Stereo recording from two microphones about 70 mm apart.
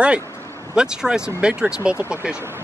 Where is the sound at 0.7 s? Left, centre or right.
Centre.